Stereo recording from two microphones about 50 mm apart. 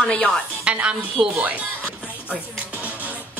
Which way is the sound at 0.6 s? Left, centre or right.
Right.